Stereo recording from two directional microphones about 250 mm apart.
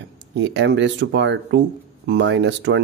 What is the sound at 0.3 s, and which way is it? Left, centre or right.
Speech, right.